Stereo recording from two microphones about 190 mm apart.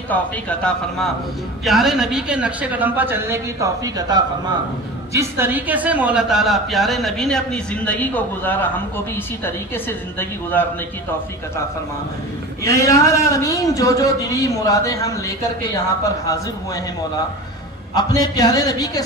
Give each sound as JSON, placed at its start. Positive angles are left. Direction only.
{"t": 0.1, "sound": "a woman's voice", "side_deg": 5}
{"t": 12.6, "sound": "a man's voice", "side_deg": 15}
{"t": 17.9, "sound": "a man's voice", "side_deg": 20}